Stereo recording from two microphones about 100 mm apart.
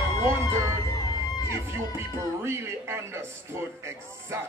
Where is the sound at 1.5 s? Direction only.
25° right (ahead or behind).